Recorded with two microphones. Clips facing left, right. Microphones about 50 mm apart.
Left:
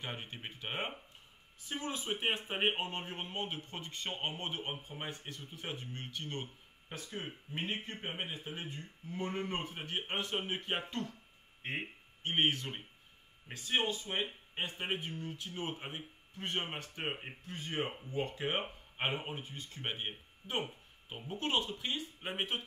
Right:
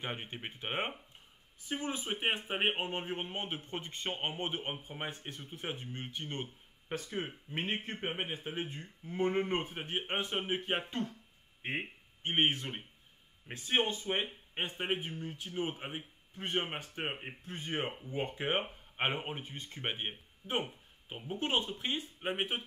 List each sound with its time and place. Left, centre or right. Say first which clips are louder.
0.0 s speech: right 3 dB; centre
1.7 s speech: right 1 dB; centre
7.5 s speech: right 3 dB; right
7.9 s speech: right 3 dB; right
14.8 s speech: right 4 dB; centre; by 19.8 s right
19.8 s speech: right 2 dB; right
22.2 s speech: right 3 dB; centre